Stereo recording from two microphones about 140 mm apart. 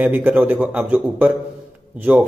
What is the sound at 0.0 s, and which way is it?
A man's voice, 10° right (ahead or behind).